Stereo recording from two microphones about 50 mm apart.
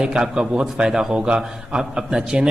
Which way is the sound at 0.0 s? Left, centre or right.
Centre.